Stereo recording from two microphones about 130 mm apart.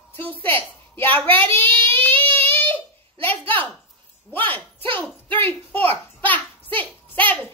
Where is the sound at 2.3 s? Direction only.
15° left (ahead or behind).